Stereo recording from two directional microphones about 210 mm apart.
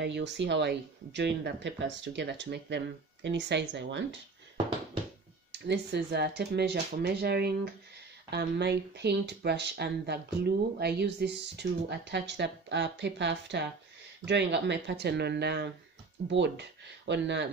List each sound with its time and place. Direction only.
0.0 s speech: 55° right (ahead or behind)
5.5 s speech: 55° right (ahead or behind)